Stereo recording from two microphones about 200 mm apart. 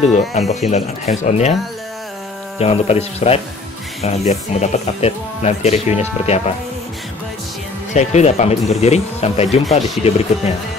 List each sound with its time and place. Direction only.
0.5 s speech: 35° left (ahead or behind)
2.6 s speech: 30° left (ahead or behind)
7.9 s speech: 35° left (ahead or behind)